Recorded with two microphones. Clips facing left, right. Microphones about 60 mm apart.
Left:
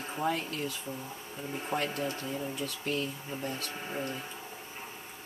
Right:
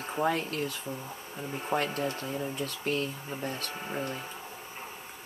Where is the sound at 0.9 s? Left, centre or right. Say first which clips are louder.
Right 2 dB; centre.